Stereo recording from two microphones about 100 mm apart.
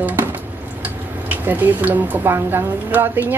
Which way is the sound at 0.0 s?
20° right (ahead or behind).